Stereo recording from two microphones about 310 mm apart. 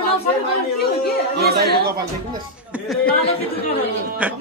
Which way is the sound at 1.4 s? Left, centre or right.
Right.